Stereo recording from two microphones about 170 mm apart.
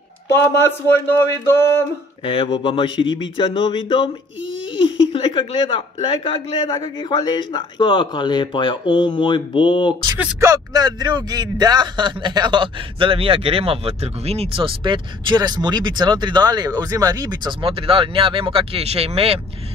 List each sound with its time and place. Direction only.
0.4 s speech: 15° left (ahead or behind)
2.2 s speech: 30° left (ahead or behind)
10.1 s speech: 20° right (ahead or behind); by 19.4 s 35° right (ahead or behind)